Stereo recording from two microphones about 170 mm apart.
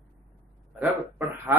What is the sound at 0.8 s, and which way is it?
Speech, 10° right (ahead or behind).